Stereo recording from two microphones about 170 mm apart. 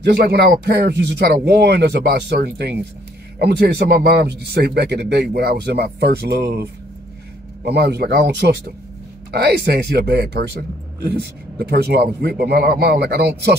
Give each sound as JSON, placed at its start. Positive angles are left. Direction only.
{"t": 0.0, "sound": "a man's voice", "side_deg": -75}
{"t": 7.6, "sound": "a man's voice", "side_deg": -75}